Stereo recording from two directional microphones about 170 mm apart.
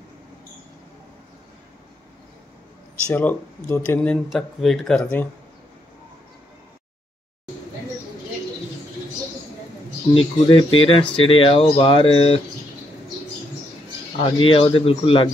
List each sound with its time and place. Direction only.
3.1 s speech: 10° left (ahead or behind)
10.1 s speech: 30° left (ahead or behind)
14.4 s speech: 30° left (ahead or behind)